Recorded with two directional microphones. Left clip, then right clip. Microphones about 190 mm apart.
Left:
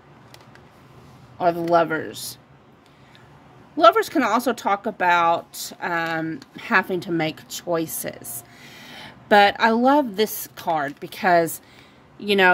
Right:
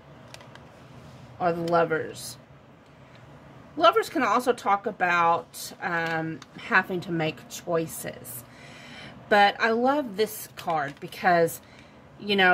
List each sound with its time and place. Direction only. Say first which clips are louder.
1.4 s a woman's voice: left 5 dB; 55° left (ahead or behind)
3.7 s a woman's voice: left 5 dB; 50° left (ahead or behind)